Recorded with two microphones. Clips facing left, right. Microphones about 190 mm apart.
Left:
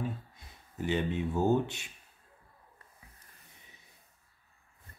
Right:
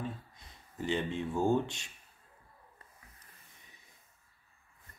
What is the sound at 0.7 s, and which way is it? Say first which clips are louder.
Speech: left 2 dB; 5° left (ahead or behind).